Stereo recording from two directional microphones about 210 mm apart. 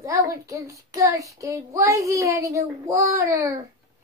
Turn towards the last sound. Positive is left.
turn(degrees=-15)  # may be behind; listen again after turning